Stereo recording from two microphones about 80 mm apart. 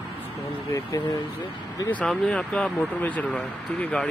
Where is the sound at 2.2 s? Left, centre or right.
Centre.